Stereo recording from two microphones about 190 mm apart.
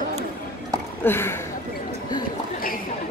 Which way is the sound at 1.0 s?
10° left (ahead or behind).